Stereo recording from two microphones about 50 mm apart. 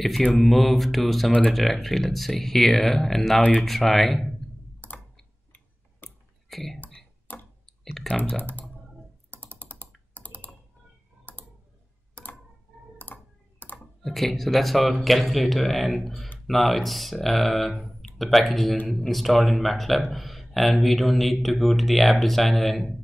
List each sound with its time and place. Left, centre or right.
0.3 s speech: centre
6.0 s a sound: centre
7.3 s clicking: left
7.6 s clicking: centre
8.4 s speech: left
9.3 s computer keyboard: left
11.3 s a sound: left
12.9 s computer keyboard: left
14.0 s speech: centre